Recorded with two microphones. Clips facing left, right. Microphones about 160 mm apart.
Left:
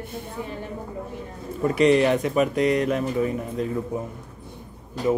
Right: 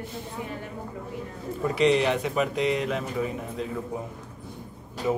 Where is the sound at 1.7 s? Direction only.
50° left (ahead or behind).